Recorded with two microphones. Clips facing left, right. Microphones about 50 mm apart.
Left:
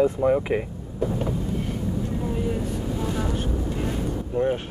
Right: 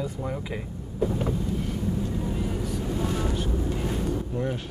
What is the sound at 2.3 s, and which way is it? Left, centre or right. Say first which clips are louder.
Vehicle: left 4 dB; left.